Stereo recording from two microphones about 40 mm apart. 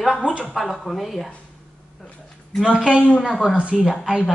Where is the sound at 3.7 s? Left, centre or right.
Centre.